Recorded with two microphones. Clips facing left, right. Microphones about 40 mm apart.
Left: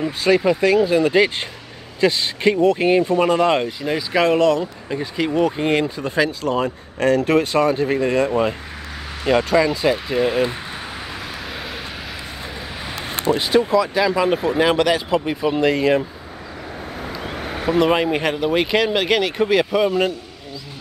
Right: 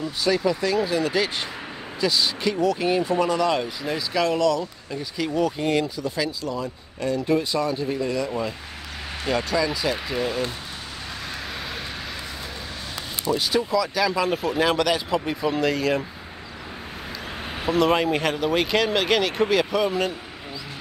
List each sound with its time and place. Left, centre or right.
0.0 s speech: left
3.6 s speech: centre
4.2 s speech: left
7.8 s speech: left
13.1 s speech: left
13.9 s speech: left
17.7 s speech: centre